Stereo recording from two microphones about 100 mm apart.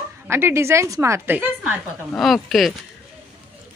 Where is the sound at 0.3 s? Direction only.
25° right (ahead or behind).